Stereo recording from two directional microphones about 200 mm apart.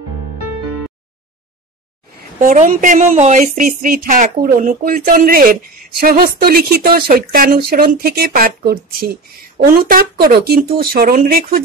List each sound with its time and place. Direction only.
2.4 s speech: 40° right (ahead or behind)